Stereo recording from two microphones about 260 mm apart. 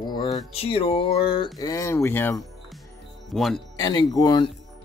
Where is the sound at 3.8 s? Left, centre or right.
Centre.